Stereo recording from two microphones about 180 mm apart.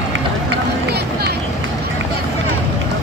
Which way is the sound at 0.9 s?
60° right (ahead or behind).